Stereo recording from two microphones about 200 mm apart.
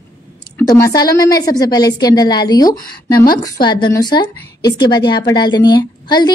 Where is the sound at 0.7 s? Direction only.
15° left (ahead or behind).